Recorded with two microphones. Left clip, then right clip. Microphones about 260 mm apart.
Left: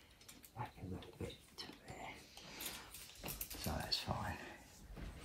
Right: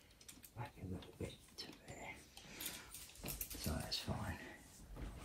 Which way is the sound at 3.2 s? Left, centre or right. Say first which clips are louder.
Left 1 dB; centre.